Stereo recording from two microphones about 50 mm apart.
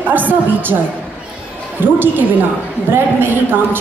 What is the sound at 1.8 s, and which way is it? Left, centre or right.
A woman's voice, right.